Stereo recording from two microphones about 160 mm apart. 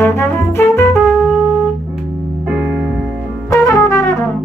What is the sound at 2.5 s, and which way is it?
Music, 10° right (ahead or behind).